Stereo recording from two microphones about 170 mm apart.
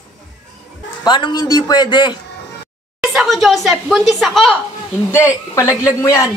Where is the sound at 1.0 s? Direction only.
25° left (ahead or behind).